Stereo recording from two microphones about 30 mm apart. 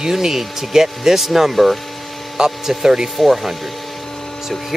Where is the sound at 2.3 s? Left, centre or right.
Right.